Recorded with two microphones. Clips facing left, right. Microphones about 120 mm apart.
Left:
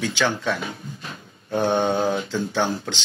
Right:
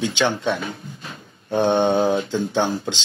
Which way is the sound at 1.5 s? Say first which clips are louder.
Right 3 dB; 20° right (ahead or behind).